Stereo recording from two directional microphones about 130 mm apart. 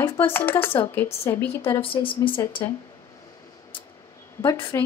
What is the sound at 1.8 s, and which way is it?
Speech, 40° left (ahead or behind).